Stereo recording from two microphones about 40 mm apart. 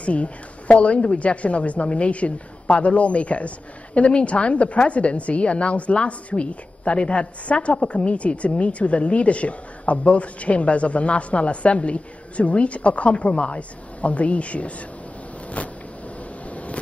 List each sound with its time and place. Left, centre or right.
0.0 s a woman's voice: left
16.4 s vehicle: left